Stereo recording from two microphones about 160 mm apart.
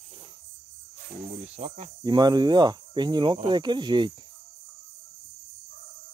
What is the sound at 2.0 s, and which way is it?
Speech, 25° right (ahead or behind).